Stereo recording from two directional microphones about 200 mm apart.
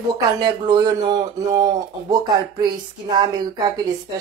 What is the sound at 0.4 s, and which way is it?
Speech, 20° right (ahead or behind).